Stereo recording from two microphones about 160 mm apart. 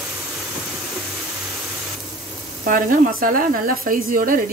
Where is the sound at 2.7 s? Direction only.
60° right (ahead or behind).